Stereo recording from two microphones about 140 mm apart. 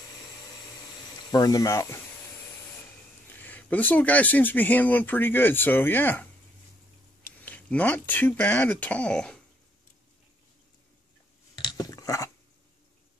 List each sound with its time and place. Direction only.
1.3 s speech: 25° left (ahead or behind)
3.3 s speech: 10° left (ahead or behind)
7.3 s speech: 10° left (ahead or behind)
11.6 s a sound: 25° left (ahead or behind)